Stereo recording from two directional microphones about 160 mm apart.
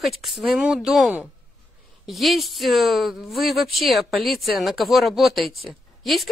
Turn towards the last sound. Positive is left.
turn(degrees=0)  # may be behind; listen again after turning